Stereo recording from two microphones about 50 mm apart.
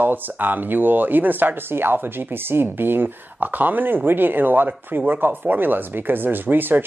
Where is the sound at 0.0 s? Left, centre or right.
Right.